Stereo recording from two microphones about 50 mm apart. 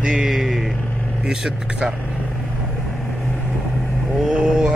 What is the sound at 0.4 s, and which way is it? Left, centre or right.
Vehicle, centre.